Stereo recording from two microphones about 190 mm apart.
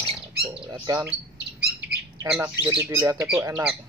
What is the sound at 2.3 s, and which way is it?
Speech, 10° right (ahead or behind).